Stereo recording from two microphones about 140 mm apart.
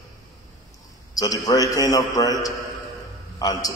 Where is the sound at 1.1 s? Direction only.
25° left (ahead or behind).